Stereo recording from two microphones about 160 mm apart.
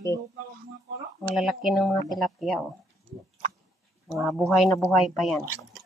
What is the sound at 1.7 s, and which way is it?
Speech, centre (ahead or behind).